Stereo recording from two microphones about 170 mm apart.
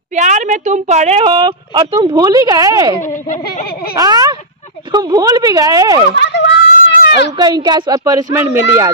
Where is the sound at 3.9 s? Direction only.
20° right (ahead or behind).